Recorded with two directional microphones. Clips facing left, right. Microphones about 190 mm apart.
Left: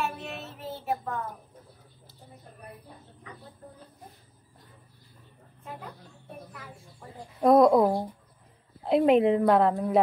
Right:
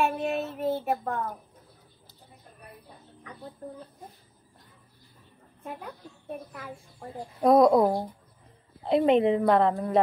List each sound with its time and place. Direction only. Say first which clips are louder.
0.0 s child singing: right 7 dB; 55° right (ahead or behind)
7.3 s a woman's voice: even; centre (ahead or behind)